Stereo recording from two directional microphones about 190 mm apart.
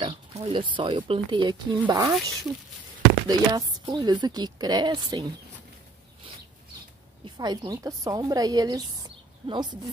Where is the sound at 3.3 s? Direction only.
20° right (ahead or behind).